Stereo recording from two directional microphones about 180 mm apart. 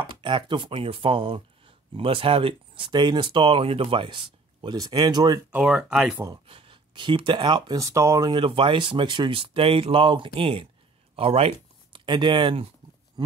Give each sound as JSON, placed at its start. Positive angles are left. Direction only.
{"t": 0.1, "sound": "speech", "side_deg": -25}
{"t": 5.5, "sound": "speech", "side_deg": -5}
{"t": 6.4, "sound": "speech", "side_deg": -30}